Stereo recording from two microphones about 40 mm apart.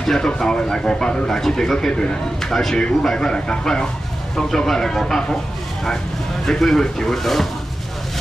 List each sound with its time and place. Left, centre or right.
0.0 s speech: centre
1.9 s a man's voice: left
2.5 s a man's voice: centre
6.4 s speech: centre